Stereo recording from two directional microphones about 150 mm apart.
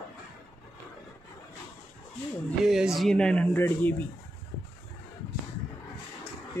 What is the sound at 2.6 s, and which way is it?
Speech, 5° right (ahead or behind).